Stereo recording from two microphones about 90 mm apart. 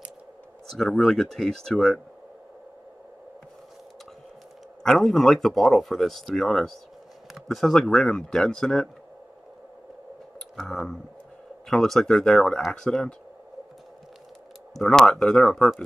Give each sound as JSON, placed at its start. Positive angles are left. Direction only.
{"t": 0.7, "sound": "speech", "side_deg": 5}
{"t": 4.8, "sound": "speech", "side_deg": 5}
{"t": 10.5, "sound": "a sound", "side_deg": 5}
{"t": 11.7, "sound": "speech", "side_deg": 5}
{"t": 14.8, "sound": "speech", "side_deg": 5}